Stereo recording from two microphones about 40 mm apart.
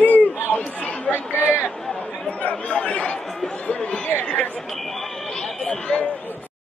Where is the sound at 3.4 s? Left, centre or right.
Left.